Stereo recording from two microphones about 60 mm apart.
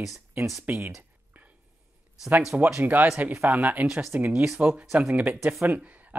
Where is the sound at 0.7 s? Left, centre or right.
Right.